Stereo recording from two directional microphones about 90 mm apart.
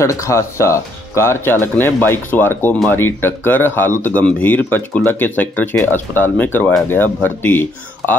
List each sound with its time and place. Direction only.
0.0 s speech: 35° left (ahead or behind)